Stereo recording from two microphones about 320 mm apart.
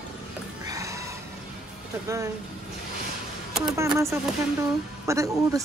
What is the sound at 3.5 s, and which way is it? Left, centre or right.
A woman's voice, centre.